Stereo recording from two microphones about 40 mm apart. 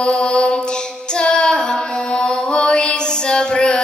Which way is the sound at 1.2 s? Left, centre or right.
Left.